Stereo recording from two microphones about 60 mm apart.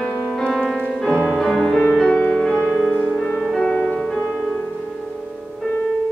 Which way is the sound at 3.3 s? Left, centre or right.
Centre.